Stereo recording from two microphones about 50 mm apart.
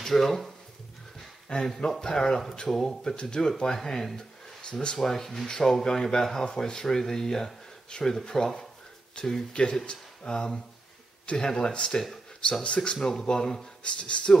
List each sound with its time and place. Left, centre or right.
0.0 s speech: centre
1.5 s speech: centre
13.8 s speech: left